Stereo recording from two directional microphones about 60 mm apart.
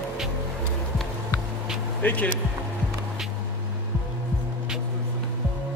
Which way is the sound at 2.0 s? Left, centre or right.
Left.